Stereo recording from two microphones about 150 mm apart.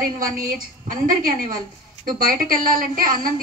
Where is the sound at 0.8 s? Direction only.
65° right (ahead or behind).